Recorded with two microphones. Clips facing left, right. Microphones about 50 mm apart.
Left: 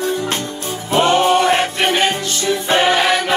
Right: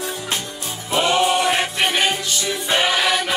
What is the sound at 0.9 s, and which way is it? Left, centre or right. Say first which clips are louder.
Music: left 5 dB; left.